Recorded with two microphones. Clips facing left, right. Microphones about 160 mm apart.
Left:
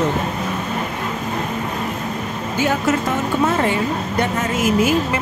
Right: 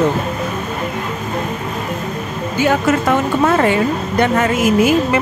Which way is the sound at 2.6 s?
70° right (ahead or behind).